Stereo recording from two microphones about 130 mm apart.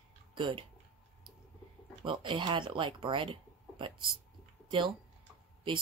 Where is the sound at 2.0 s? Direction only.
40° right (ahead or behind).